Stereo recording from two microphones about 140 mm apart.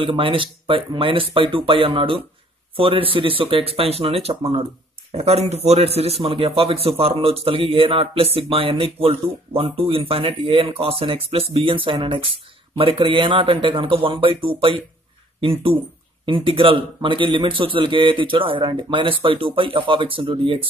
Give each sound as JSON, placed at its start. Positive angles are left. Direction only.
{"t": 0.0, "sound": "a man's voice", "side_deg": -40}
{"t": 16.3, "sound": "a man's voice", "side_deg": -40}